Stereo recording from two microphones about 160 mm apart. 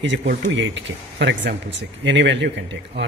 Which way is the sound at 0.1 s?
90° right.